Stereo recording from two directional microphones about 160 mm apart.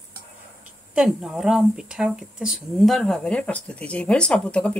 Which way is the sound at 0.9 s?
5° right (ahead or behind).